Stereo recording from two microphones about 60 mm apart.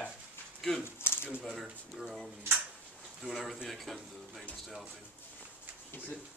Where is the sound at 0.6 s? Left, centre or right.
Centre.